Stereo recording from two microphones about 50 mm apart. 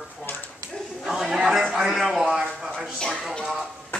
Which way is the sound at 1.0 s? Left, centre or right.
Centre.